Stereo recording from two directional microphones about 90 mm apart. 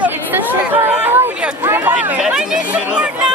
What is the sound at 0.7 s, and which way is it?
Speech, 25° right (ahead or behind).